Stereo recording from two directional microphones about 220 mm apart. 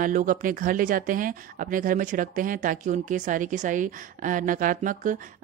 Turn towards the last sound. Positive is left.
turn(degrees=-35)  # may be behind; listen again after turning